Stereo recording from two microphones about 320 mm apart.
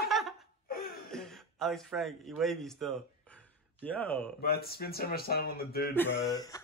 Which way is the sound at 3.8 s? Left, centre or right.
Centre.